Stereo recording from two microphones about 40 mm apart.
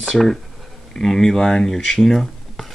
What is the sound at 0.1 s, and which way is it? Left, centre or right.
Speech, centre.